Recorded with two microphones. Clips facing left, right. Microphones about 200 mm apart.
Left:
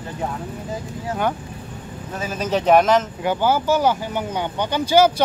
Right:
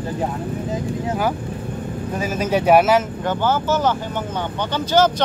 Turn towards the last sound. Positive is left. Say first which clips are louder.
# left 1 dB
turn(degrees=10)  # may be behind; listen again after turning